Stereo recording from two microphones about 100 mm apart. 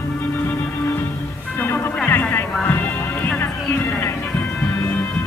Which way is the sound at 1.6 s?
20° left (ahead or behind).